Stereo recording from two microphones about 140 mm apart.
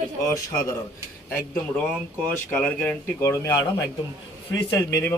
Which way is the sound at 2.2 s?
10° left (ahead or behind).